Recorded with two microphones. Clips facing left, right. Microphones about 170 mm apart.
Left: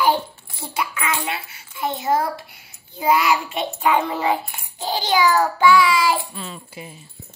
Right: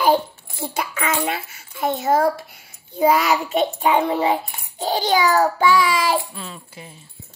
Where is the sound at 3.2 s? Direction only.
40° right (ahead or behind).